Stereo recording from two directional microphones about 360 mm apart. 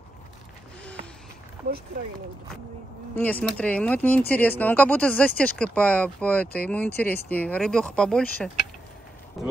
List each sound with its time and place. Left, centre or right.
2.0 s speech: right
3.2 s speech: centre